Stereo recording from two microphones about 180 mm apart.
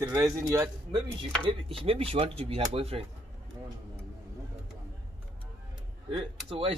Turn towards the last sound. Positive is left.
turn(degrees=-30)  # may be behind; listen again after turning